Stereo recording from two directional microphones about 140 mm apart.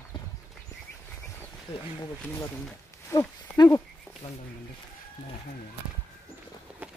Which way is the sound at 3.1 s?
15° left (ahead or behind).